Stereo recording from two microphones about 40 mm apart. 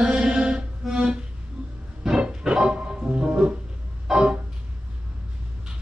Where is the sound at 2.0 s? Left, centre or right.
Centre.